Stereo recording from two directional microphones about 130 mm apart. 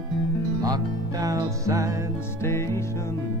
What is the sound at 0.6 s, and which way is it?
Music, 30° right (ahead or behind).